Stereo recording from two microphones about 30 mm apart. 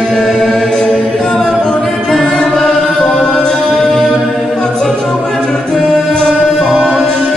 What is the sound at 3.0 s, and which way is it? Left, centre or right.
Music, centre.